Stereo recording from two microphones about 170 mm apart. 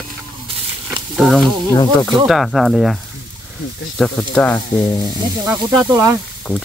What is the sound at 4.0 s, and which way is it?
Sizzle, 5° left (ahead or behind).